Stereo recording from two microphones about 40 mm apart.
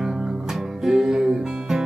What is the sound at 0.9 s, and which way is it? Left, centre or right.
Music, centre.